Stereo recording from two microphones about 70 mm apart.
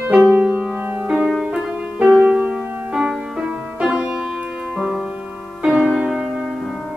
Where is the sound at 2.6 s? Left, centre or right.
Right.